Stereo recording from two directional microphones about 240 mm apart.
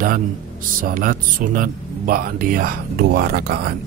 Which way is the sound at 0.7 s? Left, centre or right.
Right.